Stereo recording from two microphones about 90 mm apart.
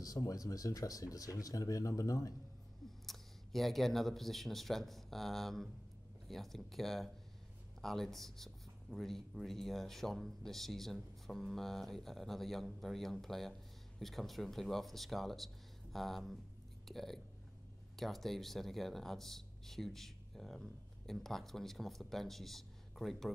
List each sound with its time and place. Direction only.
0.0 s speech: 40° left (ahead or behind)
3.1 s speech: centre (ahead or behind)